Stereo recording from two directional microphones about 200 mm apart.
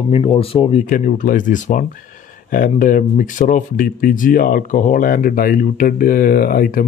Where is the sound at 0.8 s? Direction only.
40° left (ahead or behind).